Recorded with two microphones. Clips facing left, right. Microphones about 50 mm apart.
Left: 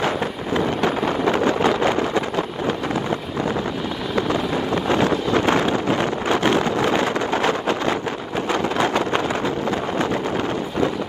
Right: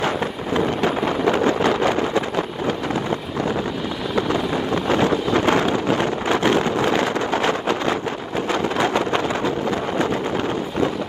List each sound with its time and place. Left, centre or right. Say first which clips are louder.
5.0 s wind noise: even; right
5.7 s wind noise: even; left
6.9 s vehicle: even; left